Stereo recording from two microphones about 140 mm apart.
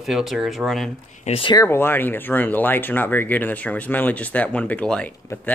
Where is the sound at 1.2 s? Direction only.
45° left (ahead or behind).